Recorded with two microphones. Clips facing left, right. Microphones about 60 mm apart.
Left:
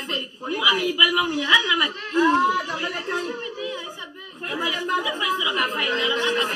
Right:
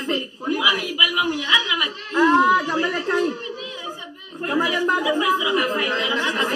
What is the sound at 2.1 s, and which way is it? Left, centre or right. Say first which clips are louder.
Speech: right 3 dB; right.